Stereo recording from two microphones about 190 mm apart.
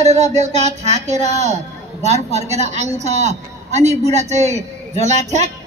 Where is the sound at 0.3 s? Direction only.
35° right (ahead or behind).